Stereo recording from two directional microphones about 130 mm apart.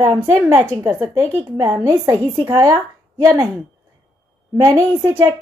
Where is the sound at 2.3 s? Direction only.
30° right (ahead or behind).